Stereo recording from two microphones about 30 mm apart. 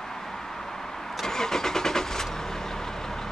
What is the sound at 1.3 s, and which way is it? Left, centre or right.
Vehicle, centre.